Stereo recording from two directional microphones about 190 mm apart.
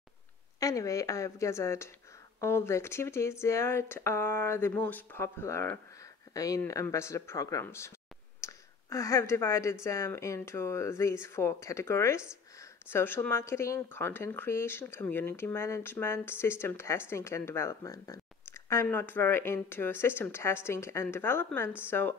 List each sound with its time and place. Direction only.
0.6 s speech: 15° left (ahead or behind)
8.4 s a sound: 15° left (ahead or behind)
9.8 s speech: 15° left (ahead or behind)